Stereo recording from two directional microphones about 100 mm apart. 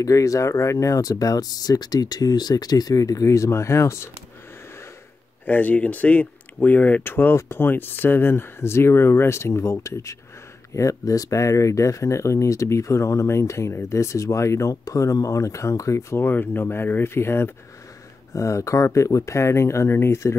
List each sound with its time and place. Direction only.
0.0 s speech: 35° left (ahead or behind)
5.4 s speech: 15° left (ahead or behind)